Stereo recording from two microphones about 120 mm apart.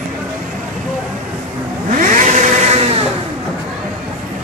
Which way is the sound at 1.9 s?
90° right.